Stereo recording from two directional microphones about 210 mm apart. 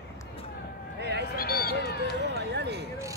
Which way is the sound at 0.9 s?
55° right (ahead or behind).